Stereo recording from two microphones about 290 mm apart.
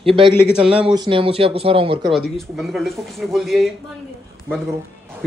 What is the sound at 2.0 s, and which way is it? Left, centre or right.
A man's voice, centre.